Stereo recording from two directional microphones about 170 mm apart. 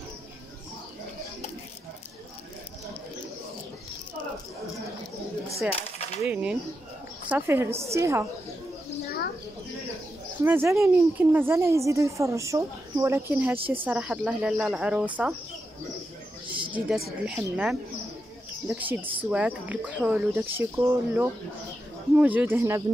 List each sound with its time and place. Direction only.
5.7 s a sound: 40° left (ahead or behind)
6.2 s speech: 10° right (ahead or behind)
10.4 s speech: 15° right (ahead or behind)
17.3 s speech: 5° right (ahead or behind)